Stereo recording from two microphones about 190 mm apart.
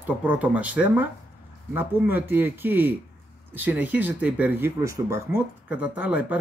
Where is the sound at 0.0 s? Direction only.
10° right (ahead or behind).